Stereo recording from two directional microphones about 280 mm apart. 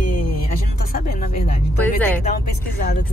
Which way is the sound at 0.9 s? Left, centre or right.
Left.